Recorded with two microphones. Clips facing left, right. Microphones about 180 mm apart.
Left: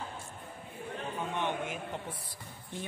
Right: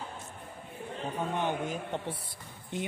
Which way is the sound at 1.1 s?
35° right (ahead or behind).